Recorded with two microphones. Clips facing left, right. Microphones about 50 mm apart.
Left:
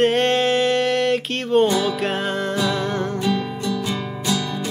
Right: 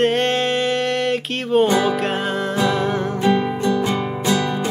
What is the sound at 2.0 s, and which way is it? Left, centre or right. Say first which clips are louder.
Music: right 1 dB; centre.